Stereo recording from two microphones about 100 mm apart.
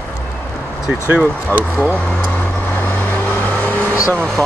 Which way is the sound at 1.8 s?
15° left (ahead or behind).